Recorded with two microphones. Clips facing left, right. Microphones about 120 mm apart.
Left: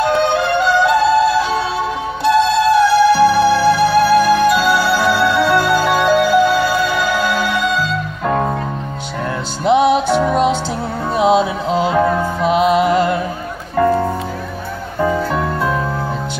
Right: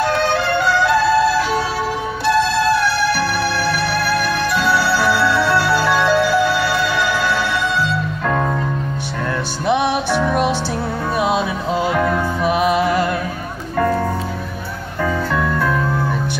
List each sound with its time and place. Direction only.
0.0 s music: 20° left (ahead or behind)
9.7 s music: 25° left (ahead or behind)